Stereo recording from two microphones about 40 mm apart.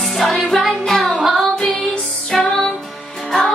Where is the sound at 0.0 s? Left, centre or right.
Centre.